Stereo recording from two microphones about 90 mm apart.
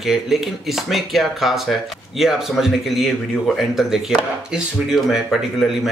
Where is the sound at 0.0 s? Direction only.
5° right (ahead or behind).